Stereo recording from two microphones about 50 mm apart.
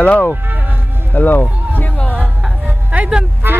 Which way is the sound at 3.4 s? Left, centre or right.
Right.